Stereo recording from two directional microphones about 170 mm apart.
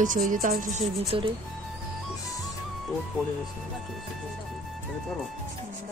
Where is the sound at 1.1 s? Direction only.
30° right (ahead or behind).